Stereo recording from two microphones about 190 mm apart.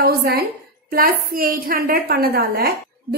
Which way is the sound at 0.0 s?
55° right (ahead or behind).